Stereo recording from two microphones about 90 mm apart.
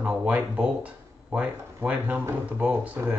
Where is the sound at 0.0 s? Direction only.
15° right (ahead or behind).